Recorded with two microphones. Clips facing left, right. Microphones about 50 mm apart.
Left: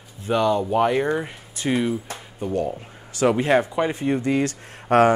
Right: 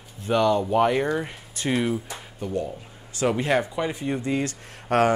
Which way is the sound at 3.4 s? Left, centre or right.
Left.